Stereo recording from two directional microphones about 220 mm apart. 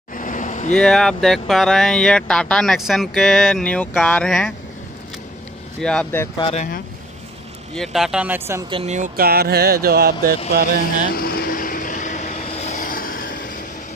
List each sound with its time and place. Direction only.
0.1 s vehicle: 35° left (ahead or behind)
0.7 s speech: centre (ahead or behind)
5.8 s speech: 5° left (ahead or behind)
6.3 s speech: 25° left (ahead or behind)
7.7 s speech: centre (ahead or behind)
8.6 s speech: 25° right (ahead or behind); by 10.1 s 45° right (ahead or behind)
11.1 s vehicle: 40° left (ahead or behind)